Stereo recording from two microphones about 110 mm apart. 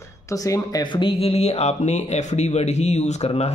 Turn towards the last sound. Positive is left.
turn(degrees=75)  # may be behind; listen again after turning